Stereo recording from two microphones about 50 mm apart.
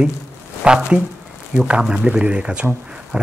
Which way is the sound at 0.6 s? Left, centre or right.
Centre.